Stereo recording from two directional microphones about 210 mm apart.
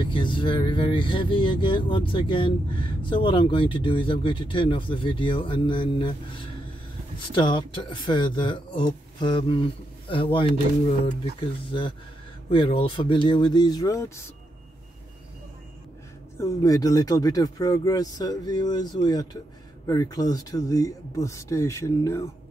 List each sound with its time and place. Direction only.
0.0 s speech: 25° left (ahead or behind)
16.3 s speech: 15° left (ahead or behind)